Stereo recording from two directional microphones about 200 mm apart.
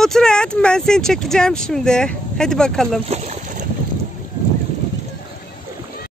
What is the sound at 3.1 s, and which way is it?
Boat, 35° right (ahead or behind).